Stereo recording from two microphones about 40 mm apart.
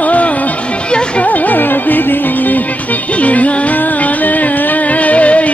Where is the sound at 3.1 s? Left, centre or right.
Left.